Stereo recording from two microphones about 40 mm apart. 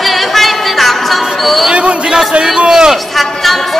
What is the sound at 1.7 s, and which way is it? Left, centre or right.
Speech, right.